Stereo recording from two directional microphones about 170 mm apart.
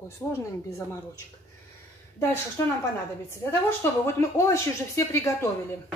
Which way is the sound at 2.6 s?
15° left (ahead or behind).